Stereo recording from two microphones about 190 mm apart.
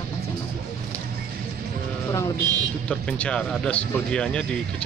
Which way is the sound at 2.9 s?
5° left (ahead or behind).